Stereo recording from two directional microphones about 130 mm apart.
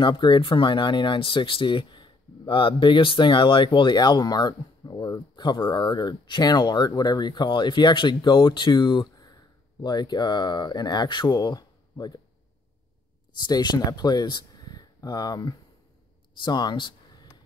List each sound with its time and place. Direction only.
0.0 s speech: 40° left (ahead or behind)
13.4 s speech: 35° left (ahead or behind)